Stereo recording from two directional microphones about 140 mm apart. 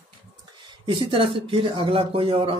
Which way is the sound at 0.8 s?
35° right (ahead or behind).